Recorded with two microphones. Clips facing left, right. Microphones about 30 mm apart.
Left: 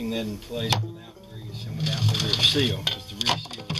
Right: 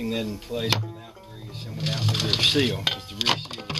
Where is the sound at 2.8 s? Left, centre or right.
Centre.